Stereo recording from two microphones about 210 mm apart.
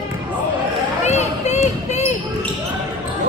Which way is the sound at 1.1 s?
30° left (ahead or behind).